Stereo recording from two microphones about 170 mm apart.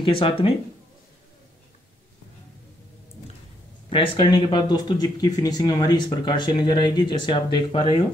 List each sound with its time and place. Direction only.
0.0 s speech: 30° left (ahead or behind)
3.9 s speech: 30° left (ahead or behind)